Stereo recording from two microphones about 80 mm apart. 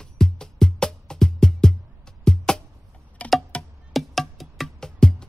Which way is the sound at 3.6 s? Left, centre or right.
Centre.